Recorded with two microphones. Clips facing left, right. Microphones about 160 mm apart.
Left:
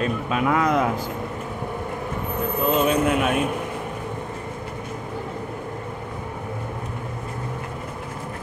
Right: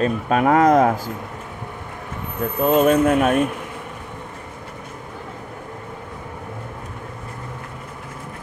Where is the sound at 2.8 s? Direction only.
45° right (ahead or behind).